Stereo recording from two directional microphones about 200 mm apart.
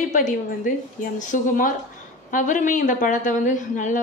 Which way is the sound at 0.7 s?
40° left (ahead or behind).